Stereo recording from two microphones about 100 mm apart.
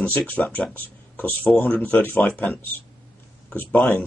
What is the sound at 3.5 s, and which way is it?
Speech, 15° left (ahead or behind).